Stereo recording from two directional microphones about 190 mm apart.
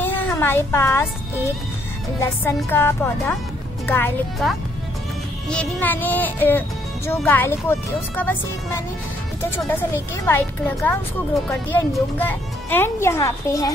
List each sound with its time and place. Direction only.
0.0 s speech: 10° left (ahead or behind)
4.4 s speech: centre (ahead or behind)
11.7 s speech: 10° left (ahead or behind)